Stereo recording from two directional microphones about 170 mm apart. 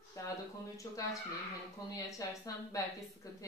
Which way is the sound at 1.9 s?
20° left (ahead or behind).